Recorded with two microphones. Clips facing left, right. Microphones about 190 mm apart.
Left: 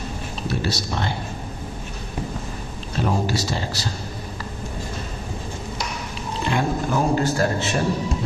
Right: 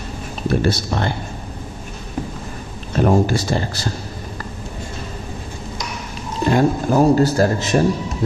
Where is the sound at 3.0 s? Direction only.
50° right (ahead or behind).